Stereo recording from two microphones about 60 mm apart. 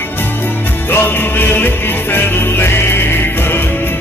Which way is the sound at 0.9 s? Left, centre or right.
Left.